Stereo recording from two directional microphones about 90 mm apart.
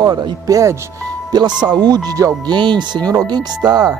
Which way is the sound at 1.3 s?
55° right (ahead or behind).